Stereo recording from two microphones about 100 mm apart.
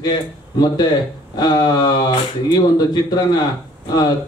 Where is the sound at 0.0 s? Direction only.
45° left (ahead or behind).